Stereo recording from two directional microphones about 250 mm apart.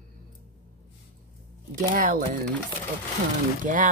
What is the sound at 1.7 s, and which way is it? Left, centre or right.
Speech, right.